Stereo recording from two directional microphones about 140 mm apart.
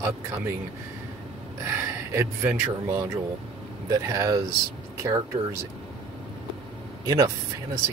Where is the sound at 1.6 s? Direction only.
20° right (ahead or behind).